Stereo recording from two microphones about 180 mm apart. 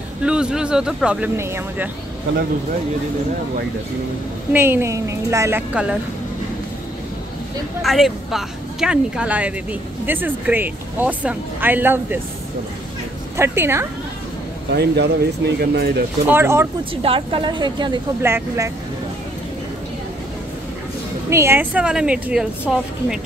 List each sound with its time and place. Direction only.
0.2 s a woman's voice: 5° right (ahead or behind)
4.5 s speech: 10° right (ahead or behind)
7.8 s speech: centre (ahead or behind)
13.4 s speech: 15° right (ahead or behind)
14.7 s speech: 65° right (ahead or behind)
16.3 s speech: 15° right (ahead or behind)
16.9 s a woman's voice: 30° right (ahead or behind)
18.2 s speech: 15° right (ahead or behind)
21.3 s a woman's voice: 15° right (ahead or behind)